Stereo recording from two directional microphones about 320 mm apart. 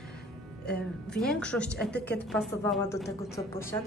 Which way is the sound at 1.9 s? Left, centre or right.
Left.